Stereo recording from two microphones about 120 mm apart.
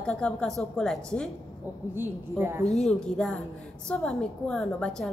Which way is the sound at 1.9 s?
20° right (ahead or behind).